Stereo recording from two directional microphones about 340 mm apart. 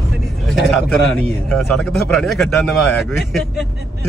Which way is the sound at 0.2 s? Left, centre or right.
Centre.